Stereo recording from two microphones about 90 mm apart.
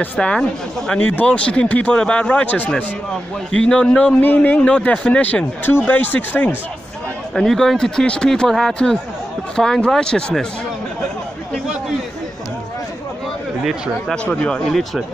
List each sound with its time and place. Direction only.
0.0 s speech: 10° left (ahead or behind)
7.3 s speech: 5° left (ahead or behind)
14.1 s speech: 15° left (ahead or behind)